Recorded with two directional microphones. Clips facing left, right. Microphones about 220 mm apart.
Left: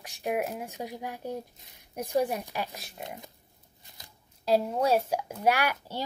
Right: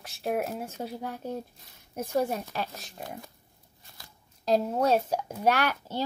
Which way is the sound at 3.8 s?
20° left (ahead or behind).